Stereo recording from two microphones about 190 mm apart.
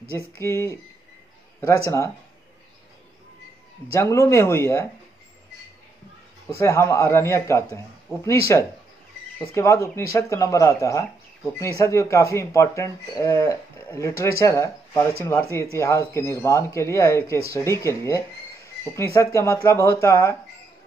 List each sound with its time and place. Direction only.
0.4 s speech: 15° left (ahead or behind)
3.9 s speech: 15° left (ahead or behind)
6.6 s speech: 15° left (ahead or behind)